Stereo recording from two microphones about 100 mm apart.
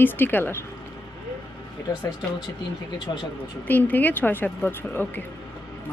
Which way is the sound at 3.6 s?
15° left (ahead or behind).